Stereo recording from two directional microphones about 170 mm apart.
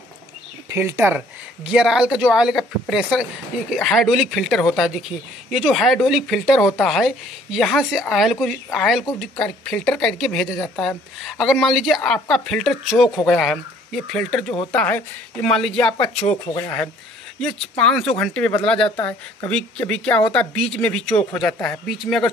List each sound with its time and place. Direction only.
0.7 s a woman's voice: 15° right (ahead or behind); by 15.9 s 5° left (ahead or behind)
15.9 s speech: 25° left (ahead or behind)
17.4 s a woman's voice: 5° left (ahead or behind)